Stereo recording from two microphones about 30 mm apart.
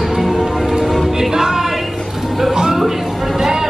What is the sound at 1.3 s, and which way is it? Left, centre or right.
Music, centre.